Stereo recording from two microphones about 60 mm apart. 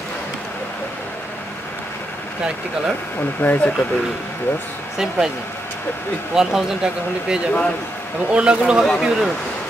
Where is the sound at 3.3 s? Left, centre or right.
Left.